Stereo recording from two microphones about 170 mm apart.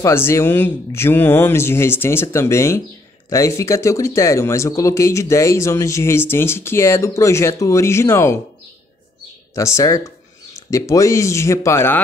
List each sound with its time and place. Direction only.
0.0 s speech: 15° left (ahead or behind)
9.6 s speech: 15° left (ahead or behind)